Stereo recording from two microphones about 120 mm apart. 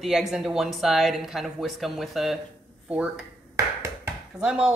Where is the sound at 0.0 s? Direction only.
Centre (ahead or behind).